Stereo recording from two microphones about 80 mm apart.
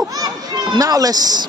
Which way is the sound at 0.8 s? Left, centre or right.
Right.